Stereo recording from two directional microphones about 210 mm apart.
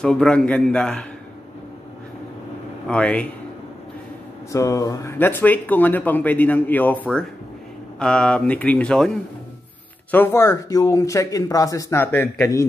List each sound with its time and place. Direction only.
0.0 s speech: 5° left (ahead or behind)
2.9 s speech: 5° left (ahead or behind)
4.5 s speech: 15° left (ahead or behind)